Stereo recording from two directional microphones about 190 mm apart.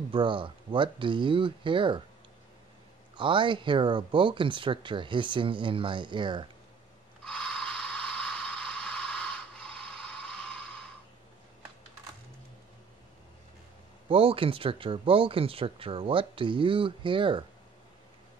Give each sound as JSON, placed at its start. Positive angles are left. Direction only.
{"t": 0.1, "sound": "speech", "side_deg": -25}
{"t": 3.2, "sound": "speech", "side_deg": -25}
{"t": 7.2, "sound": "mechanisms", "side_deg": 5}
{"t": 14.0, "sound": "speech", "side_deg": -30}